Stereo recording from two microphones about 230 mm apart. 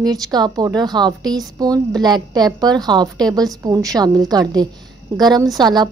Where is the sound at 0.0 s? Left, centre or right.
Centre.